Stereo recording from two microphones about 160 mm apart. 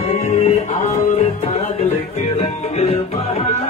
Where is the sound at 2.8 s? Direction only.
40° left (ahead or behind).